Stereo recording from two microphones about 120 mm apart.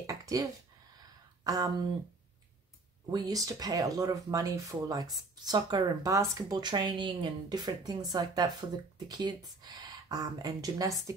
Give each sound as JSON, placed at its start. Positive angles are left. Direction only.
{"t": 0.0, "sound": "a sound", "side_deg": -30}
{"t": 1.4, "sound": "speech", "side_deg": -30}
{"t": 3.1, "sound": "speech", "side_deg": -30}